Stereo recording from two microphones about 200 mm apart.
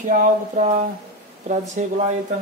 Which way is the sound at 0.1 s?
40° right (ahead or behind).